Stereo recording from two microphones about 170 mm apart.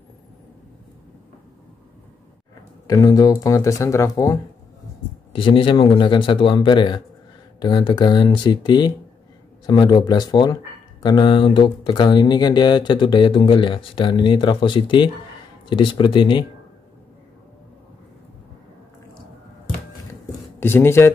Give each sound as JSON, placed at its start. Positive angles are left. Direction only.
{"t": 2.9, "sound": "speech", "side_deg": 20}
{"t": 5.3, "sound": "speech", "side_deg": 30}
{"t": 20.5, "sound": "speech", "side_deg": 15}